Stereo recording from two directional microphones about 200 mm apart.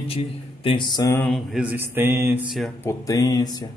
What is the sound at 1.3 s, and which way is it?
Mantra, 5° right (ahead or behind).